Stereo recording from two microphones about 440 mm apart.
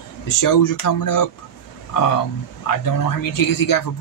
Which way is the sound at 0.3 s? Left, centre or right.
Left.